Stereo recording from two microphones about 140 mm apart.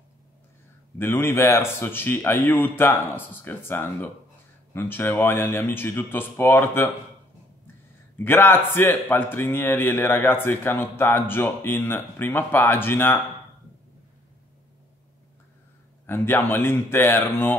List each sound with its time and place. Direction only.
0.9 s speech: 15° left (ahead or behind)
8.2 s speech: 15° left (ahead or behind)
16.1 s speech: 15° left (ahead or behind)